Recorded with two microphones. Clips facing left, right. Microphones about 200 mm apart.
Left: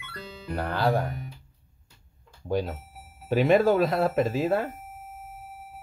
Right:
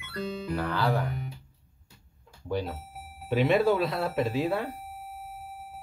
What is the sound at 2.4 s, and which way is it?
Speech, 45° left (ahead or behind).